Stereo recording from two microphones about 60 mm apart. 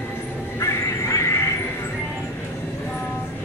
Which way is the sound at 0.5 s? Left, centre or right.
Left.